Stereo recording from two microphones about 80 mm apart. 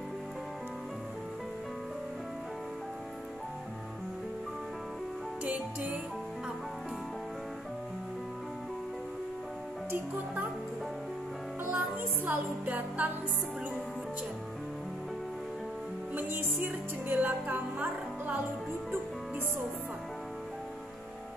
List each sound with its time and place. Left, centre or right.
5.4 s music: centre
9.8 s music: right
11.7 s music: centre
16.1 s music: right